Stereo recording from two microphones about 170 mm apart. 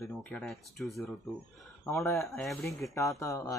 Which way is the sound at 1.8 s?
15° left (ahead or behind).